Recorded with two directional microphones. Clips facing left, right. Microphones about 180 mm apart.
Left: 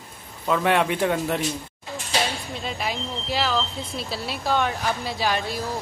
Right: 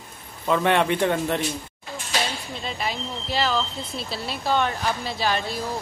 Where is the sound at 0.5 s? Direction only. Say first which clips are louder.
Right 1 dB; 5° left (ahead or behind).